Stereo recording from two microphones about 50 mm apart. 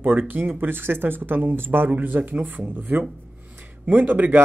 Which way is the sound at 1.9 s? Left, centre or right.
Right.